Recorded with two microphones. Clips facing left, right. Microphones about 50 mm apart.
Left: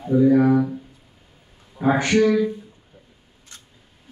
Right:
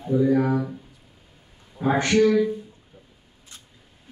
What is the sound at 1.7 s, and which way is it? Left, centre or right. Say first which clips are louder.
Speech: left 2 dB; centre.